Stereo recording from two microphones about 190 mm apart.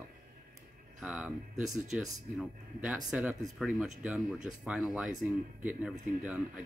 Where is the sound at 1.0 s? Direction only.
5° right (ahead or behind).